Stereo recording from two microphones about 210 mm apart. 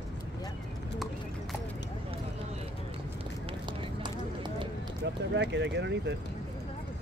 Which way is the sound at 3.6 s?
20° right (ahead or behind).